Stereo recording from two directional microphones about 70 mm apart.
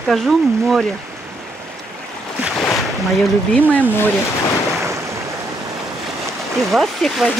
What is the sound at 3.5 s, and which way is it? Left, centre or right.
Speech, left.